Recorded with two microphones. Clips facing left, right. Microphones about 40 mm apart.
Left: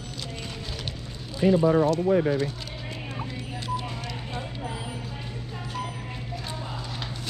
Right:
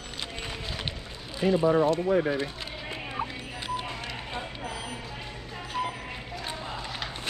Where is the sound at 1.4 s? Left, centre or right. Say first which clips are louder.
Left 2 dB; centre.